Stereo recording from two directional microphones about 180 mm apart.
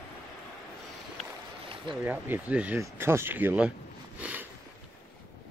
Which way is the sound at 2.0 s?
10° right (ahead or behind).